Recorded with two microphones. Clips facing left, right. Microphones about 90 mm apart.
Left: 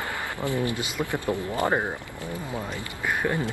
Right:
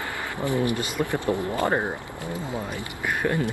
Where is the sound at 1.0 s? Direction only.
5° left (ahead or behind).